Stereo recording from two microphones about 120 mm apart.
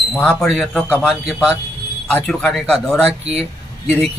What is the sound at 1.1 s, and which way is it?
Speech, 5° right (ahead or behind).